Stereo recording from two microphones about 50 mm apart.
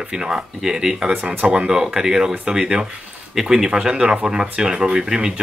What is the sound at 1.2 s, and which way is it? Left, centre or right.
Speech, right.